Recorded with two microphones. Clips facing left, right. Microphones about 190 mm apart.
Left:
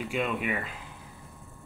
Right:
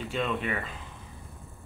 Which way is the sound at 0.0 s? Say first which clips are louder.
Even; 10° left (ahead or behind).